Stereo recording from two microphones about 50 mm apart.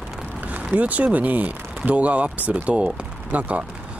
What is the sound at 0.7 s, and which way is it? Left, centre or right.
Speech, right.